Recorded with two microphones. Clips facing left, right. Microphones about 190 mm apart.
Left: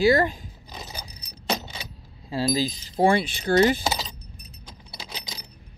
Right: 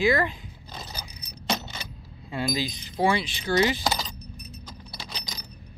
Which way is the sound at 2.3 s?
40° left (ahead or behind).